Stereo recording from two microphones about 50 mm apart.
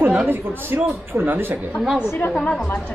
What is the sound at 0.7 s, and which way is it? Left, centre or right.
Speech, right.